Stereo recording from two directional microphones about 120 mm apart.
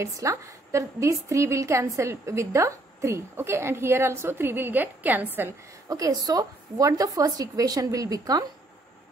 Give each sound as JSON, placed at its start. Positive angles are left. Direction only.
{"t": 0.0, "sound": "a woman's voice", "side_deg": -25}
{"t": 5.9, "sound": "a woman's voice", "side_deg": -30}